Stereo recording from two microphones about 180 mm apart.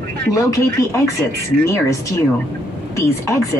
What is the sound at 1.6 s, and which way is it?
A woman's voice, 15° left (ahead or behind).